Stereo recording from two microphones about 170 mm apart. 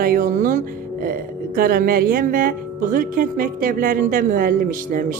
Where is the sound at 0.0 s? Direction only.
55° right (ahead or behind).